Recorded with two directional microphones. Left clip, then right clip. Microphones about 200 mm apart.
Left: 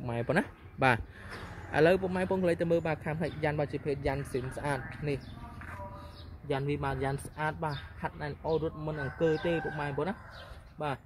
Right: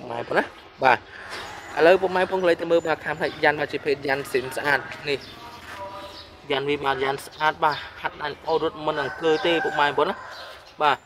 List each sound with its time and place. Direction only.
0.1 s speech: 5° left (ahead or behind)
6.5 s a man's voice: 5° left (ahead or behind)